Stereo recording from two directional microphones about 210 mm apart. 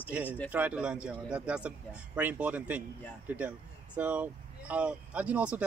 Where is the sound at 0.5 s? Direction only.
5° right (ahead or behind).